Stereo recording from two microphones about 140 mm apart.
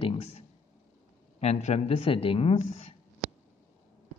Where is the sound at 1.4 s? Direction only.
50° left (ahead or behind).